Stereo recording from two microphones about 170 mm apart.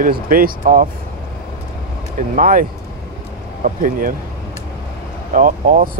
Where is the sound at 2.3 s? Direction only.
55° right (ahead or behind).